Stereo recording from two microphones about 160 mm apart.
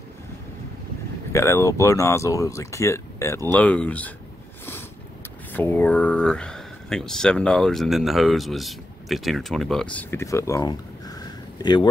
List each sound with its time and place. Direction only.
1.3 s speech: 15° left (ahead or behind)
5.5 s speech: 10° left (ahead or behind)
9.9 s speech: 15° left (ahead or behind)